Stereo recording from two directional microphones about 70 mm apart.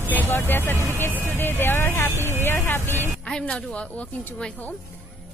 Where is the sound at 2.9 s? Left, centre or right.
Right.